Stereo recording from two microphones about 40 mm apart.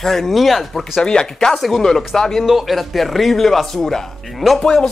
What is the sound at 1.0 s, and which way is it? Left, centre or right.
A woman's voice, centre.